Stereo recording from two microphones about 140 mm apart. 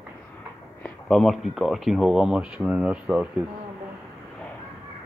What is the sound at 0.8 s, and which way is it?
Speech, 5° left (ahead or behind).